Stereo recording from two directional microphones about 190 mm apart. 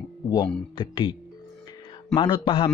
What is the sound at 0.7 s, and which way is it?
Speech, 25° left (ahead or behind).